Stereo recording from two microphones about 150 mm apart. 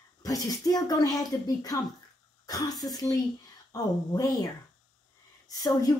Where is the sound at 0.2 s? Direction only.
25° left (ahead or behind).